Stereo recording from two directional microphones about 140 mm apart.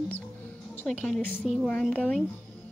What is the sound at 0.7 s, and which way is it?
Speech, 10° left (ahead or behind).